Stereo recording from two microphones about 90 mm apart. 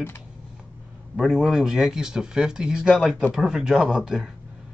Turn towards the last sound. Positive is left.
turn(degrees=-5)  # may be behind; listen again after turning